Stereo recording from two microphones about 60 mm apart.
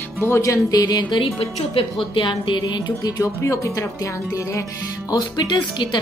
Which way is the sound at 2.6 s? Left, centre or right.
Left.